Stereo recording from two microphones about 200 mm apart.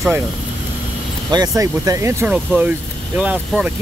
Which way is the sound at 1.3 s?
15° right (ahead or behind).